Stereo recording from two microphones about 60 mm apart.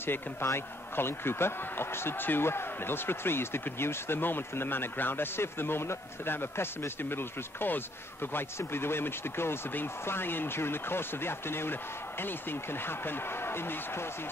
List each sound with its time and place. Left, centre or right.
0.0 s a man's voice: left